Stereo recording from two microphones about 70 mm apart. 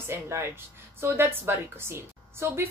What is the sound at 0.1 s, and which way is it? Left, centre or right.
A woman's voice, right.